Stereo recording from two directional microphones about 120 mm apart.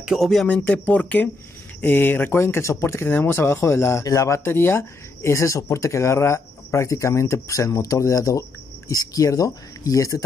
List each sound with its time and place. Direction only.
0.0 s speech: centre (ahead or behind); by 10.2 s 30° left (ahead or behind)